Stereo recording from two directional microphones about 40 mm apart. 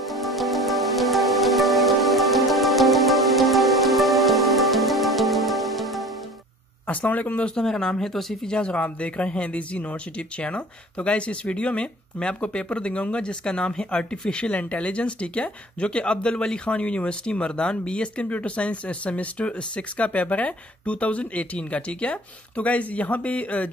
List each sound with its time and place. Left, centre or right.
0.0 s music: centre
6.9 s speech: left
7.6 s speech: centre
8.5 s speech: left